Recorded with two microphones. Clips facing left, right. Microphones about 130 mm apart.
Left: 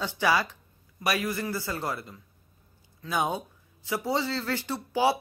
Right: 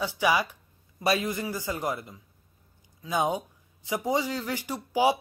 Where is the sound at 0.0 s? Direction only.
15° right (ahead or behind).